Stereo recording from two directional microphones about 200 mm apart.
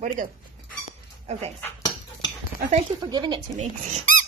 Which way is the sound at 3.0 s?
25° right (ahead or behind).